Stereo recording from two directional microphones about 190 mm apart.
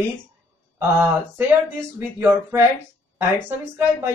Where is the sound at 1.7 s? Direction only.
10° right (ahead or behind).